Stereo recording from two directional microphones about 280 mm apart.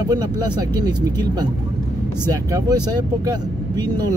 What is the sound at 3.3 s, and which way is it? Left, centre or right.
Speech, centre.